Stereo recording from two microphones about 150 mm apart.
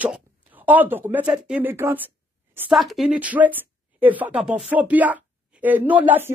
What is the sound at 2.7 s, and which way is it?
Speech, centre (ahead or behind).